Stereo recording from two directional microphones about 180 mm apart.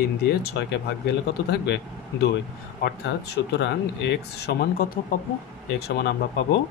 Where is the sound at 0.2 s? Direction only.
60° left (ahead or behind).